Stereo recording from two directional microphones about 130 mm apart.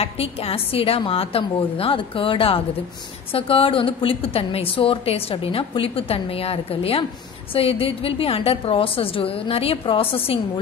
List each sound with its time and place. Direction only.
0.0 s a woman's voice: 50° left (ahead or behind)